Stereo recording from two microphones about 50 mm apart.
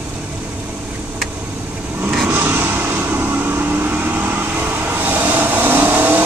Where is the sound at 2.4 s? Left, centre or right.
Right.